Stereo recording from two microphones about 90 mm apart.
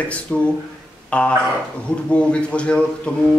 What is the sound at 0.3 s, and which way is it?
Speech, 5° left (ahead or behind).